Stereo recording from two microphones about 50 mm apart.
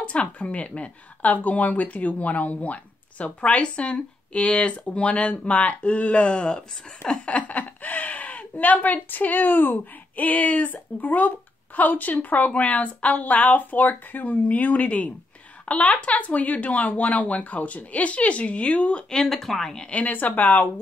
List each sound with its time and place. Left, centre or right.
0.1 s a woman's voice: left
19.2 s speech: centre
19.9 s speech: left